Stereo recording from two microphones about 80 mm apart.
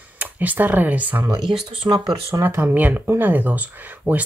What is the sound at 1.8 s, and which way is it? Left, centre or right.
Speech, right.